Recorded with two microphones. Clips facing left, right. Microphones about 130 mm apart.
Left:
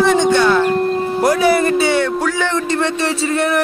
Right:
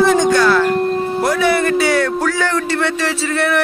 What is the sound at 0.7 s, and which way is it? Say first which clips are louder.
Music: even; centre (ahead or behind).